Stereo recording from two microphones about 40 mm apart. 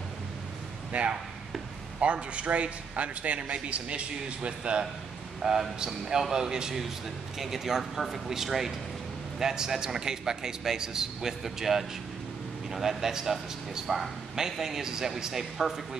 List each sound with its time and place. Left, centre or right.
0.9 s a man's voice: right; by 16.0 s centre